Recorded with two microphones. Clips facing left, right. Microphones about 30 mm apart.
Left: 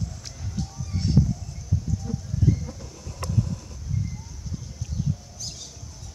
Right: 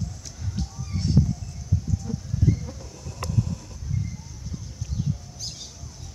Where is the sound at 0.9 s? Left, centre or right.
Centre.